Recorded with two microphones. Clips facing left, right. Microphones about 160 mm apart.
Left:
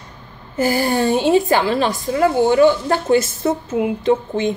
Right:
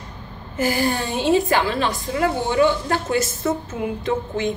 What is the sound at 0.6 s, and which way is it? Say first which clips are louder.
A woman's voice: left 4 dB; 30° left (ahead or behind).